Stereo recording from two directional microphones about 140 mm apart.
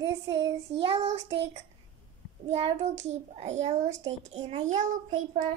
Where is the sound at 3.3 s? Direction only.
55° right (ahead or behind); by 5.4 s 70° right (ahead or behind).